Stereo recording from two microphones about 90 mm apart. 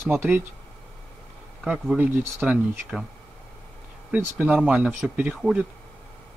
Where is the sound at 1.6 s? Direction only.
10° right (ahead or behind).